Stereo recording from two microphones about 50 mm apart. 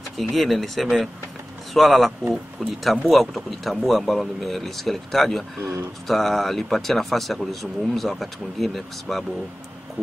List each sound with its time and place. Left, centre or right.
0.2 s speech: centre
5.6 s speech: right
6.0 s speech: centre